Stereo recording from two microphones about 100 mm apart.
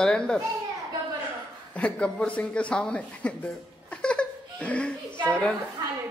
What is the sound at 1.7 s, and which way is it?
A man's voice, 10° left (ahead or behind).